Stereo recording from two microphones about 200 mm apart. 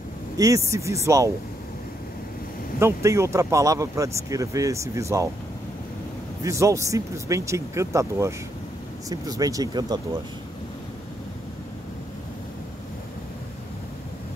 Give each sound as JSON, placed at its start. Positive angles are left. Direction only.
{"t": 0.4, "sound": "speech", "side_deg": -15}
{"t": 2.8, "sound": "speech", "side_deg": -15}
{"t": 6.4, "sound": "speech", "side_deg": -15}